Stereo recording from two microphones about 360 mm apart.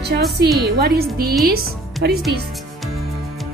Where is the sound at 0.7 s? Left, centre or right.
Right.